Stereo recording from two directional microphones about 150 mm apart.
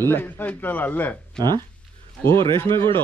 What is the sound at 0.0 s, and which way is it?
Speech, 15° left (ahead or behind).